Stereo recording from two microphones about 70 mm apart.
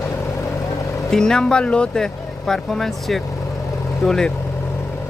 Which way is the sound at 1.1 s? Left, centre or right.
Centre.